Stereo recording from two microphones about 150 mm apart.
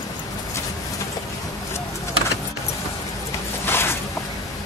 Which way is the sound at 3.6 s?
15° left (ahead or behind).